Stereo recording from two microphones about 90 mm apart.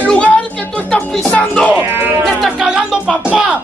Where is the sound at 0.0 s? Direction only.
15° left (ahead or behind).